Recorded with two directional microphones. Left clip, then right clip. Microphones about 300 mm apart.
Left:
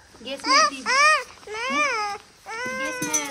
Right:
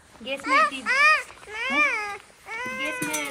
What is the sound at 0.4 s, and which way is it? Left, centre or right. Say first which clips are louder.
Babbling: left 2 dB; left.